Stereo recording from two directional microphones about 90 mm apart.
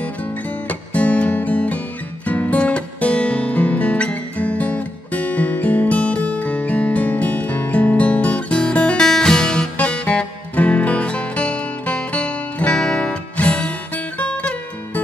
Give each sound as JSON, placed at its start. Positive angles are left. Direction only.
{"t": 0.7, "sound": "music", "side_deg": 15}
{"t": 2.2, "sound": "guitar", "side_deg": 15}